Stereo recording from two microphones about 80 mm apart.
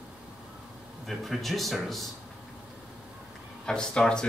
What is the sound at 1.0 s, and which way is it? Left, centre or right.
A man's voice, centre.